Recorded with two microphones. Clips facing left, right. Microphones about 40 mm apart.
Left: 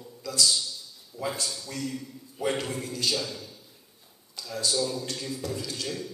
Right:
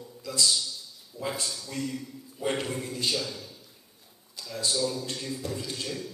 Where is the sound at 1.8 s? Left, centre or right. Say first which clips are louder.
Right 2 dB; right.